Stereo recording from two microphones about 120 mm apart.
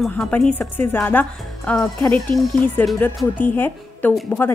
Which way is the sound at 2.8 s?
15° left (ahead or behind).